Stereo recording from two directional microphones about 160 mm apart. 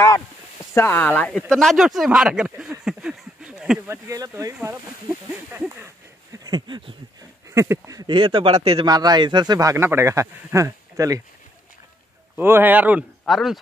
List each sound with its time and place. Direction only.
0.7 s speech: 15° left (ahead or behind)
1.5 s a sound: centre (ahead or behind)
3.9 s a man's voice: 20° right (ahead or behind)
6.3 s a sound: 25° right (ahead or behind)
7.5 s a man's voice: 15° right (ahead or behind)
12.4 s speech: 15° right (ahead or behind)